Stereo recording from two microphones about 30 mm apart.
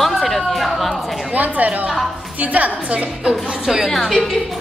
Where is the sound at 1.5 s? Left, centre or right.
Right.